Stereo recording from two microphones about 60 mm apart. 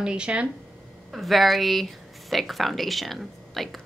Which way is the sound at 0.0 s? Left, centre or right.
Centre.